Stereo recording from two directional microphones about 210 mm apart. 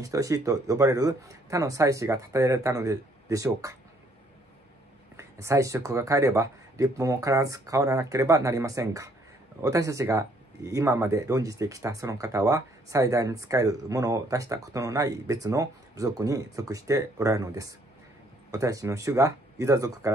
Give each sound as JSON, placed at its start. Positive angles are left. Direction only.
{"t": 0.0, "sound": "speech", "side_deg": -15}
{"t": 5.1, "sound": "speech", "side_deg": -15}